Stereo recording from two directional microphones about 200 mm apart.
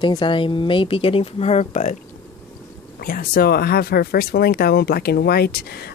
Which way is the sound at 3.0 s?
45° left (ahead or behind).